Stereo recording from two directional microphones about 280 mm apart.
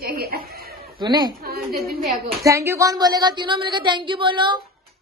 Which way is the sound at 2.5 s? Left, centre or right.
Centre.